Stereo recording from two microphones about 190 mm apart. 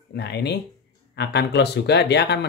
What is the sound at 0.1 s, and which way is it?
Speech, 60° left (ahead or behind).